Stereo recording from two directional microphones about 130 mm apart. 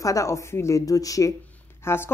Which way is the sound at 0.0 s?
25° left (ahead or behind).